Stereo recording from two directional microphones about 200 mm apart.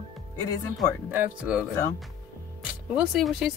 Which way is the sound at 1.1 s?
5° right (ahead or behind).